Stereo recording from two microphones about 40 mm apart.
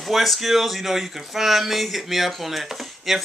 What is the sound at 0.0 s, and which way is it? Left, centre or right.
Speech, centre.